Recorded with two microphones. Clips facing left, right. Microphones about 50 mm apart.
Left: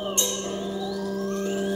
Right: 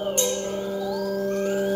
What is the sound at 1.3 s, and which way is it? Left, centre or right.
Music, right.